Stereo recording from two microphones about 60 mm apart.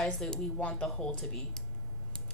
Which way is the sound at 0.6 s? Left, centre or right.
Left.